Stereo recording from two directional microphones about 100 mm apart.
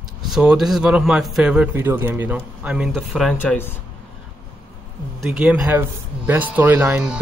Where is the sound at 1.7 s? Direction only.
20° right (ahead or behind).